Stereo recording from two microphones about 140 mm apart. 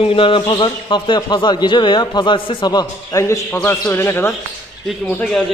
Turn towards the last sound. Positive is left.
turn(degrees=5)  # may be behind; listen again after turning